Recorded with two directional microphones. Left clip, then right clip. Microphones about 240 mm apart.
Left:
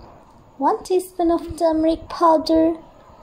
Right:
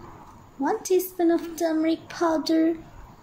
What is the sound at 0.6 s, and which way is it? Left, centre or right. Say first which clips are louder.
A woman's voice: left 4 dB; centre.